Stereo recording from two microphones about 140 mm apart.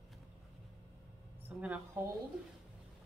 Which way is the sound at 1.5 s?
10° right (ahead or behind).